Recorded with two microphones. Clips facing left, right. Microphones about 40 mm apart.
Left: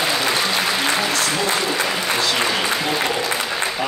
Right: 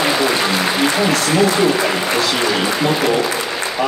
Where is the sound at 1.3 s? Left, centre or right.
Right.